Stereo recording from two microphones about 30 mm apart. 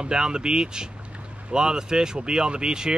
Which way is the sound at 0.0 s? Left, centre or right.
Right.